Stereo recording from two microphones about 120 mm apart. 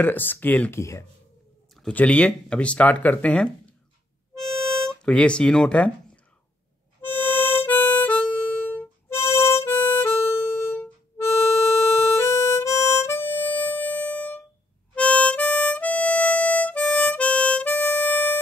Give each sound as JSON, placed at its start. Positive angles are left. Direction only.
{"t": 0.0, "sound": "speech", "side_deg": 15}
{"t": 1.8, "sound": "speech", "side_deg": 10}
{"t": 4.4, "sound": "harmonica", "side_deg": 5}
{"t": 7.0, "sound": "harmonica", "side_deg": 15}